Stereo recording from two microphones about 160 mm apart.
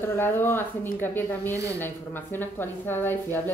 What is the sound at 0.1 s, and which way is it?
Speech, 15° left (ahead or behind).